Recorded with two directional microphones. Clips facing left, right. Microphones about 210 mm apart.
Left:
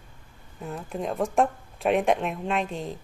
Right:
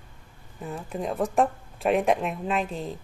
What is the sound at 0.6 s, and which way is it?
Speech, centre (ahead or behind).